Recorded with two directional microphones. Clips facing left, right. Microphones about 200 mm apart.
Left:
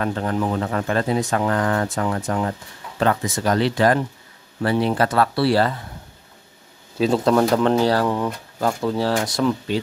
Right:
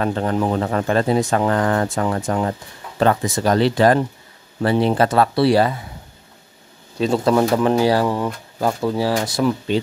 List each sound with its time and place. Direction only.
0.0 s speech: 30° right (ahead or behind); by 5.9 s 15° right (ahead or behind)
7.0 s speech: centre (ahead or behind)